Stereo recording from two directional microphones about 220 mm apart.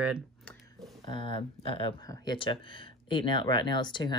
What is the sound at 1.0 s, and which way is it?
Speech, 20° left (ahead or behind).